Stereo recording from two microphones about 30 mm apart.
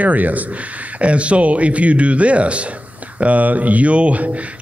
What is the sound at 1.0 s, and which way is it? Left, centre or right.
Speech, right.